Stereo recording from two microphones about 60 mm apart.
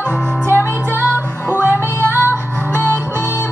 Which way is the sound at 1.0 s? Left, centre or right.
Right.